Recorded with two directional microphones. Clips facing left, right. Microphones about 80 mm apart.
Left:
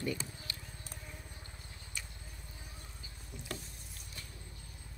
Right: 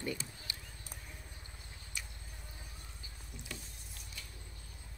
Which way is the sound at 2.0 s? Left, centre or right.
Centre.